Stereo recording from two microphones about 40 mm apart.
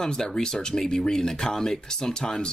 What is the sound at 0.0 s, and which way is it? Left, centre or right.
Speech, centre.